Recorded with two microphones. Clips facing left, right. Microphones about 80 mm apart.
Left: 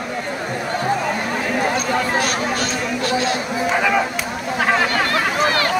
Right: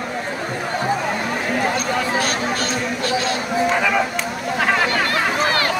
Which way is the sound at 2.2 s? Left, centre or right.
Right.